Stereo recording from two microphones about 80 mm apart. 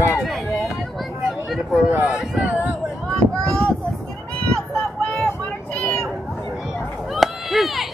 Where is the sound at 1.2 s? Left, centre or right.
Centre.